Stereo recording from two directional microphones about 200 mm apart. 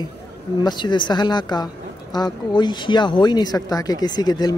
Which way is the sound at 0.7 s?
20° left (ahead or behind).